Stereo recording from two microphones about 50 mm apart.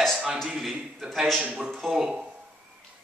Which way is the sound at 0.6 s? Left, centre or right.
Centre.